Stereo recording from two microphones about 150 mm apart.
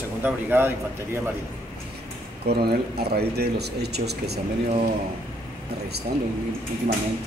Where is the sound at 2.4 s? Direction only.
90° right.